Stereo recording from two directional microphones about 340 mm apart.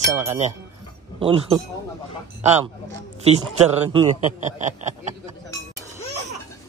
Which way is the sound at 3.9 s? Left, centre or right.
Centre.